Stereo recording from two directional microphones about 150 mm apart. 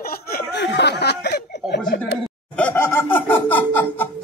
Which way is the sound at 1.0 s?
90° left.